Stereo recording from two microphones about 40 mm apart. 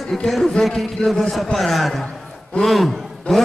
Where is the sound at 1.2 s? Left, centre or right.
Centre.